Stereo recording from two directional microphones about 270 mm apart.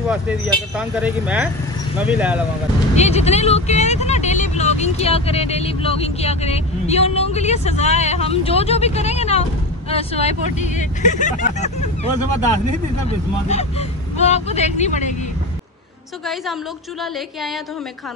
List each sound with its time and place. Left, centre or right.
0.1 s speech: centre
3.0 s speech: left
13.5 s speech: left
17.0 s speech: centre